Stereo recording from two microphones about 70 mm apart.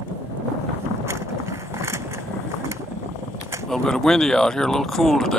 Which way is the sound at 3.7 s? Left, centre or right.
Centre.